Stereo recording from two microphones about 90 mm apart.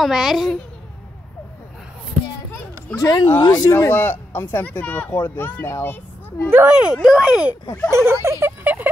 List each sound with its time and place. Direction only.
0.0 s a child's voice: 5° right (ahead or behind)
3.0 s speech: 45° left (ahead or behind)
3.7 s speech: 25° left (ahead or behind)
6.7 s speech: 10° right (ahead or behind)
7.9 s speech: 30° right (ahead or behind)